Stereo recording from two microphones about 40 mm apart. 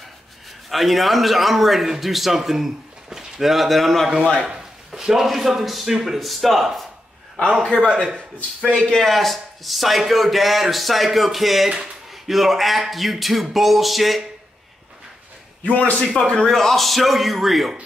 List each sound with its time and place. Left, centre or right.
0.7 s a man's voice: centre
4.6 s a man's voice: centre
7.9 s speech: right
8.7 s a man's voice: centre
15.6 s a man's voice: left
16.0 s a man's voice: centre